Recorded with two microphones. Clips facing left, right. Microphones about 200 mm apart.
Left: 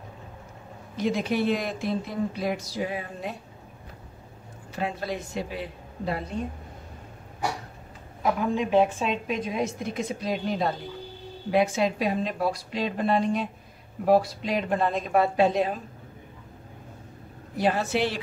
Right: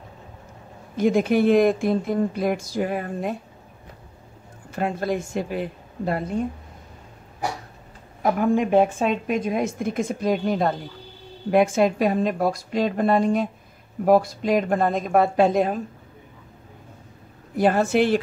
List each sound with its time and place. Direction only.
0.9 s a woman's voice: 50° right (ahead or behind)
4.7 s a woman's voice: 50° right (ahead or behind)
8.2 s a woman's voice: 50° right (ahead or behind)
17.6 s a woman's voice: 50° right (ahead or behind)